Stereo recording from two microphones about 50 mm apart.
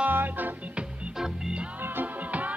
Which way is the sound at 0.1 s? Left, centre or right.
Right.